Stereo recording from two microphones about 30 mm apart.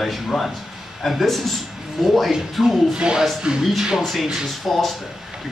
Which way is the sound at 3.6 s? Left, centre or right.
Centre.